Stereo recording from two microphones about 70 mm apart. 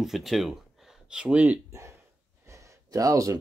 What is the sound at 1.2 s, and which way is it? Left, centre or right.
Speech, centre.